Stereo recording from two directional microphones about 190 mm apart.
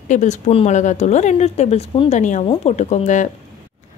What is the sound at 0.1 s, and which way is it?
A woman's voice, 40° left (ahead or behind).